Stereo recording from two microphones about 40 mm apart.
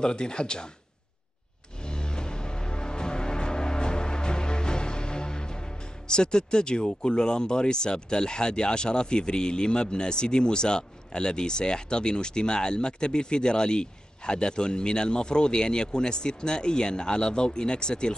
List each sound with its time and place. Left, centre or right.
0.0 s speech: left
1.8 s music: left